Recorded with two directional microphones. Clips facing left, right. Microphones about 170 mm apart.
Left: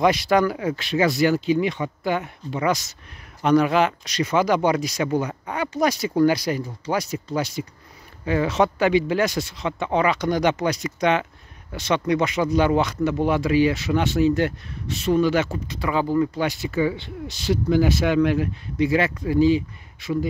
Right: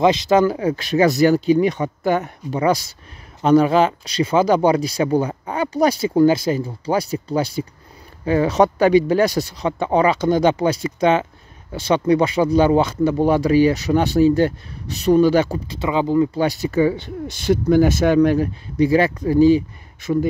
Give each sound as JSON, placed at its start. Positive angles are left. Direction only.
{"t": 0.0, "sound": "speech", "side_deg": -25}
{"t": 16.3, "sound": "speech", "side_deg": -40}